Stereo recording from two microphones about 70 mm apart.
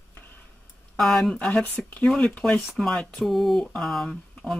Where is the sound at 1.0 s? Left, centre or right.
Centre.